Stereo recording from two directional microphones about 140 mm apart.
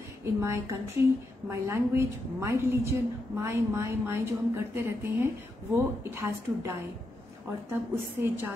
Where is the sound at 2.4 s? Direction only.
20° right (ahead or behind).